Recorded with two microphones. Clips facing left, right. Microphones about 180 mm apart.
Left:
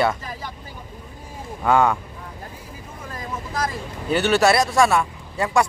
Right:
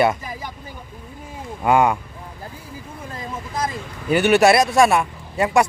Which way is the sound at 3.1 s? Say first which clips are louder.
Even; 20° right (ahead or behind).